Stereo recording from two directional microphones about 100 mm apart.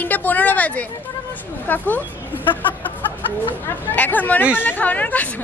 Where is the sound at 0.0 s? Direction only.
15° left (ahead or behind).